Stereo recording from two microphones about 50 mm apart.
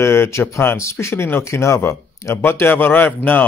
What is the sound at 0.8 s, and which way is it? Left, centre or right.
Speech, left.